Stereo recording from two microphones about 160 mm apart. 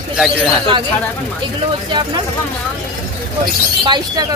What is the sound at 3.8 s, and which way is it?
Speech, 25° right (ahead or behind).